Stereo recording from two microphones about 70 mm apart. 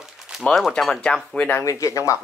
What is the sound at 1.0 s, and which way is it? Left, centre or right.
Speech, centre.